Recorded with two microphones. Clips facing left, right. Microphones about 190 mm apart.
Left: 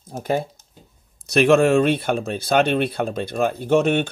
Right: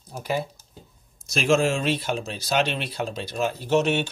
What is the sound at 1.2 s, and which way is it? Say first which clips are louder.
Speech: left 6 dB; 65° left (ahead or behind).